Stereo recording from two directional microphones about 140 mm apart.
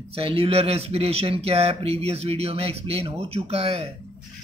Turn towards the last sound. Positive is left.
turn(degrees=-45)  # may be behind; listen again after turning